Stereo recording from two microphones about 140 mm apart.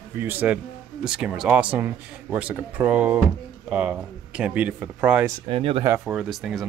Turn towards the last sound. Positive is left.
turn(degrees=0)  # may be behind; listen again after turning